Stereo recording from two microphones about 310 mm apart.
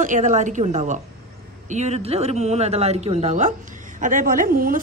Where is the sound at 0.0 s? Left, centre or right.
Right.